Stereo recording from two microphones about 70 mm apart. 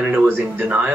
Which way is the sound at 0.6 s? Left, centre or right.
Right.